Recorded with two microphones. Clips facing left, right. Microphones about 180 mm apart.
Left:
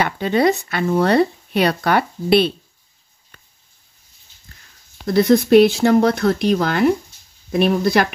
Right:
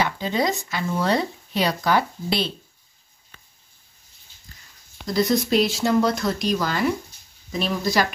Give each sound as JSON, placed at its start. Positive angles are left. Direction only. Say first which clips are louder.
{"t": 0.0, "sound": "speech", "louder": "left 6 dB", "side_deg": 60}
{"t": 5.0, "sound": "speech", "louder": "left 7 dB", "side_deg": 60}